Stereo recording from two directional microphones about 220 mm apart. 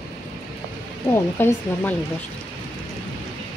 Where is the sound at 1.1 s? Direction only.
10° left (ahead or behind).